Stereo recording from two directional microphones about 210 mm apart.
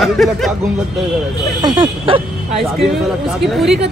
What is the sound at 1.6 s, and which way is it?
Speech, 20° right (ahead or behind).